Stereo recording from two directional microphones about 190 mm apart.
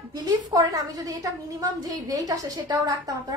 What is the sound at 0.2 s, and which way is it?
A woman's voice, 20° right (ahead or behind).